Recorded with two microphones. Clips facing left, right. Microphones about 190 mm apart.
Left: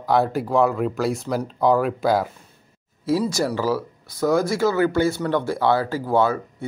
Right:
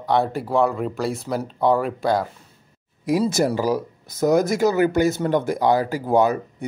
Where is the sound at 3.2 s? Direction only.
25° right (ahead or behind).